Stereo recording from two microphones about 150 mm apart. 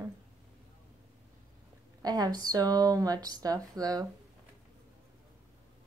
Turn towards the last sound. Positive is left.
turn(degrees=-25)  # may be behind; listen again after turning